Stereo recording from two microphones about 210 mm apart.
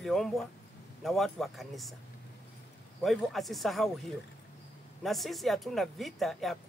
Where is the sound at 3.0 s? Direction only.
Centre (ahead or behind).